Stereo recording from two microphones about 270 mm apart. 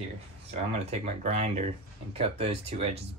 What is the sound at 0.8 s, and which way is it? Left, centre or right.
Speech, right.